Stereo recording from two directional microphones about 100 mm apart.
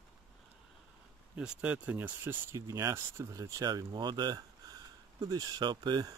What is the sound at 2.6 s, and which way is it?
Speech, 35° right (ahead or behind).